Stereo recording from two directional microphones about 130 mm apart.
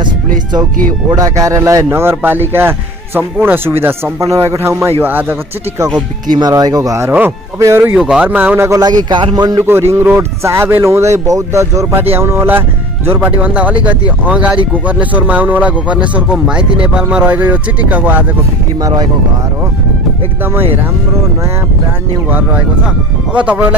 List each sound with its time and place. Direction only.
1.1 s speech: 25° right (ahead or behind)
6.3 s speech: 30° right (ahead or behind)
8.0 s speech: 10° right (ahead or behind); by 9.7 s 30° right (ahead or behind)
9.7 s speech: 20° right (ahead or behind)
18.8 s speech: 25° right (ahead or behind)
23.3 s speech: 10° right (ahead or behind)